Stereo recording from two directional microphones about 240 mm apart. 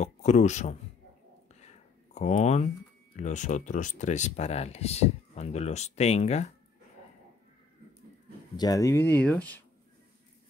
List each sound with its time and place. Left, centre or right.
0.0 s speech: left
2.1 s speech: left
8.5 s speech: centre